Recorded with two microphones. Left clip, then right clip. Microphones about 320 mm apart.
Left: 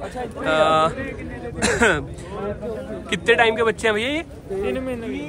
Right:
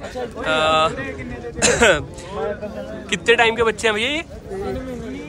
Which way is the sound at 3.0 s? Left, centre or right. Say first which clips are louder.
Right 1 dB; centre.